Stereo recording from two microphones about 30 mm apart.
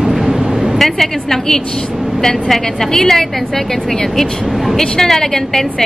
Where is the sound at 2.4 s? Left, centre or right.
Centre.